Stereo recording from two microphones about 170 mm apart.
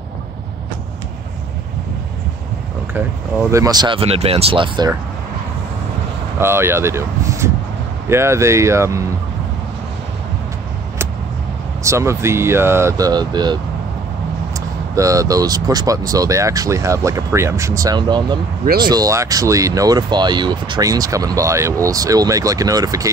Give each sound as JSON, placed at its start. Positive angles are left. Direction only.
{"t": 2.9, "sound": "speech", "side_deg": -15}
{"t": 6.4, "sound": "speech", "side_deg": -15}
{"t": 11.8, "sound": "speech", "side_deg": -15}
{"t": 15.0, "sound": "speech", "side_deg": -20}